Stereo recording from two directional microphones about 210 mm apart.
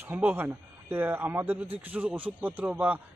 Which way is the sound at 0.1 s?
10° right (ahead or behind).